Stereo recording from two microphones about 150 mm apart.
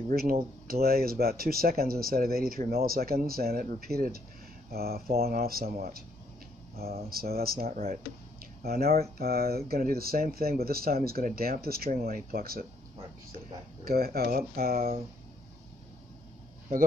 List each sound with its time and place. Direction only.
0.1 s speech: 85° right
7.1 s speech: 90° right
7.7 s speech: 75° right (ahead or behind)
13.8 s speech: 90° right